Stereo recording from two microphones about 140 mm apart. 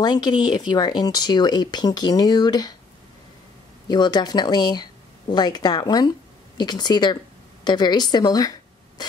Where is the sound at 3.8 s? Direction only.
30° left (ahead or behind).